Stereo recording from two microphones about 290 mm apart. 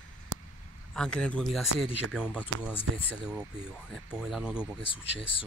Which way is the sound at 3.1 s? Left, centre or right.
Centre.